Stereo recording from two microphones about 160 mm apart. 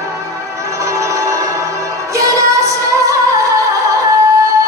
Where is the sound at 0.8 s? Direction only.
20° right (ahead or behind).